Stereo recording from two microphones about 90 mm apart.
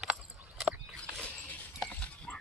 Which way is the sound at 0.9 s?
10° left (ahead or behind).